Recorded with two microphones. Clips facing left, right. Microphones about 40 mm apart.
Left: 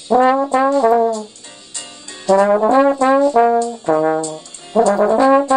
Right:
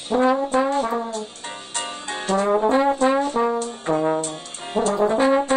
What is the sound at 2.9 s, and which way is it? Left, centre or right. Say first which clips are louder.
Brass instrument: left 5 dB; left.